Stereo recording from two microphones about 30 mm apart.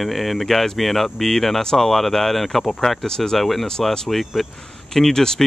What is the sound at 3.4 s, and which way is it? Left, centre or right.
Speech, centre.